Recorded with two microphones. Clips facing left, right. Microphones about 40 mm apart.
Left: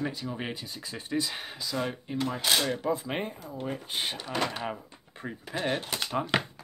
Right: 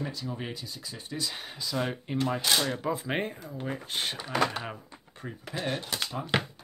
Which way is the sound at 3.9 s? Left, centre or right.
Centre.